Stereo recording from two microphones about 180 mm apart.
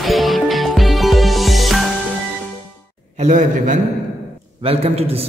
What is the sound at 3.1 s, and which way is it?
A man's voice, 40° right (ahead or behind).